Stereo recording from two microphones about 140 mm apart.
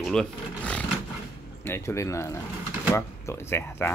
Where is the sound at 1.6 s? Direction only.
20° left (ahead or behind).